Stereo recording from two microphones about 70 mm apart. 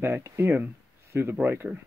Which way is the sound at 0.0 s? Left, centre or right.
Right.